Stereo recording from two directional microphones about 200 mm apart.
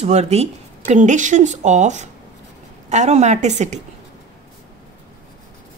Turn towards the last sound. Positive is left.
turn(degrees=-35)  # may be behind; listen again after turning